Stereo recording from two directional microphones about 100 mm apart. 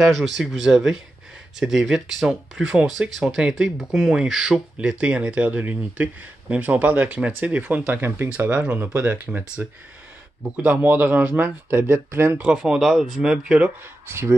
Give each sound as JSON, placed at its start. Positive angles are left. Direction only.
{"t": 0.0, "sound": "speech", "side_deg": -5}
{"t": 12.4, "sound": "speech", "side_deg": -10}
{"t": 14.0, "sound": "speech", "side_deg": -25}